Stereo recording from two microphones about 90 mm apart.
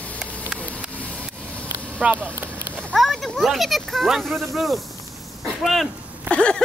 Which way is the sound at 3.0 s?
Centre (ahead or behind).